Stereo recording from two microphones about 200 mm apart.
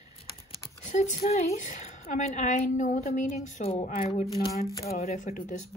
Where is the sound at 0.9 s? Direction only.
35° left (ahead or behind).